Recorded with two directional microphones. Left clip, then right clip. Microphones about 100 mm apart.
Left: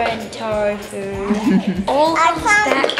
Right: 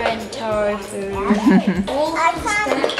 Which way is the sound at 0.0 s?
10° right (ahead or behind).